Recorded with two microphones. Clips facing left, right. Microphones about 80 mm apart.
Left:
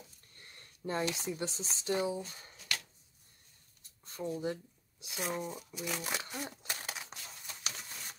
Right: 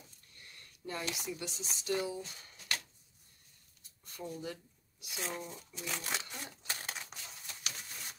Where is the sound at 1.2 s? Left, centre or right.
Left.